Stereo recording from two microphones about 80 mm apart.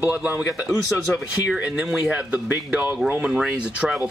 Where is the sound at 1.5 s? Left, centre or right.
Centre.